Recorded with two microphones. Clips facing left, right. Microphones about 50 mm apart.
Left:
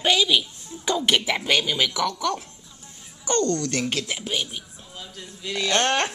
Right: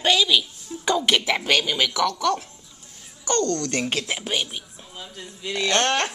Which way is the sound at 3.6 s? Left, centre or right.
Centre.